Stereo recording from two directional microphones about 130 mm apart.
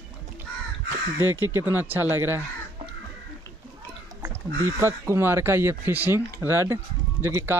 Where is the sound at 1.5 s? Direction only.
15° right (ahead or behind).